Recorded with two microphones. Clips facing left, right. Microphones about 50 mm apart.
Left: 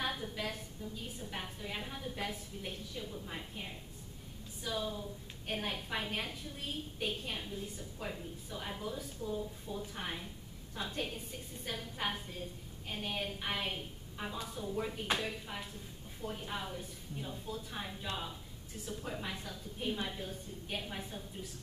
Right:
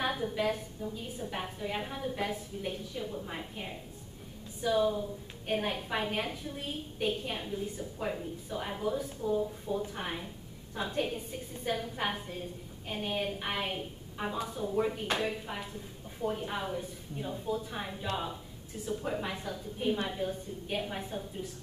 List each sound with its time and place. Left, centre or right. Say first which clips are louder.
0.0 s a woman's voice: right 7 dB; centre